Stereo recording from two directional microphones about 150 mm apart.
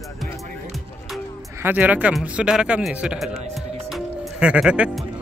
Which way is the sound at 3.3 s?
45° right (ahead or behind).